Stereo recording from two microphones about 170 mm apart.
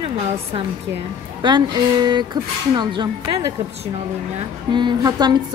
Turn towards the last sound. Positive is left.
turn(degrees=-25)  # may be behind; listen again after turning